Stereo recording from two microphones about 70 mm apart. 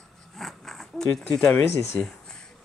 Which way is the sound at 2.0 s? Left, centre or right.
Centre.